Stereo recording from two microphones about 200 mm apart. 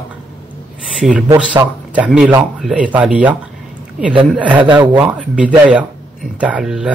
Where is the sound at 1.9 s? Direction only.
5° right (ahead or behind).